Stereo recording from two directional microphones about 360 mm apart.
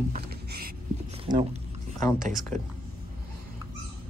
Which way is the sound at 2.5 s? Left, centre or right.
Right.